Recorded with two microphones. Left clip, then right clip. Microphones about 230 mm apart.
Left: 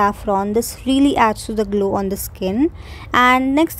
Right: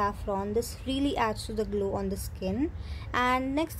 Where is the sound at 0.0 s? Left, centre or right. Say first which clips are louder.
Left 13 dB; left.